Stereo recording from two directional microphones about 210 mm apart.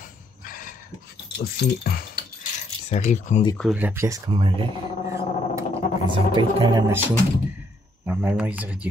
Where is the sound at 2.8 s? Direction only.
35° left (ahead or behind).